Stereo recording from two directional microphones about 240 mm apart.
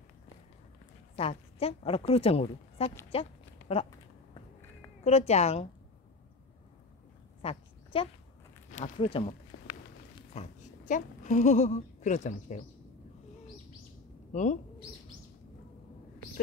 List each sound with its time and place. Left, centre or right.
1.1 s a woman's voice: left
3.1 s a sound: left
5.0 s speech: left
7.4 s a sound: left
8.7 s speech: left
10.3 s a woman's voice: left
14.3 s speech: left